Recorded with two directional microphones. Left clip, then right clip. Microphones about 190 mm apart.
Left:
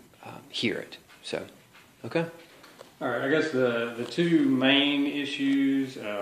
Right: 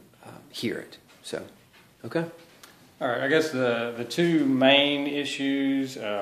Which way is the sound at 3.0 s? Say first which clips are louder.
Right 2 dB; 45° right (ahead or behind).